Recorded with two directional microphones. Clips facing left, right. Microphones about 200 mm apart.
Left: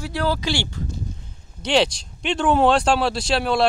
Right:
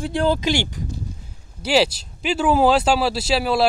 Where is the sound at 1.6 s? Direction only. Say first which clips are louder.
Right 1 dB; 5° right (ahead or behind).